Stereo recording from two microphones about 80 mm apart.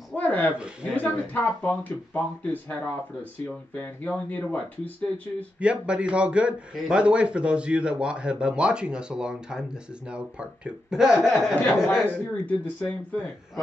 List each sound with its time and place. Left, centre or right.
0.1 s a sound: left
0.9 s speech: left
5.6 s a man's voice: centre
11.2 s a sound: centre
11.5 s speech: centre
12.6 s speech: centre